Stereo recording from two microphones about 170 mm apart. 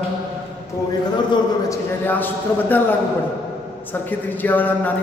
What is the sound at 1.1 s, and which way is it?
Speech, 25° left (ahead or behind).